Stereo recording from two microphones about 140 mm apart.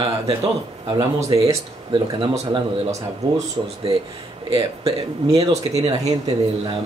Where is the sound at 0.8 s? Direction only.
30° right (ahead or behind).